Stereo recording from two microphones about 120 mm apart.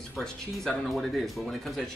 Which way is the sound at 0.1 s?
5° left (ahead or behind).